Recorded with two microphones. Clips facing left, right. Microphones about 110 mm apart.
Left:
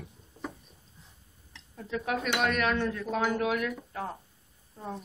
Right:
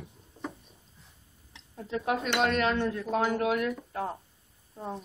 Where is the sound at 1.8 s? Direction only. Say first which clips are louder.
Right 2 dB; 30° right (ahead or behind).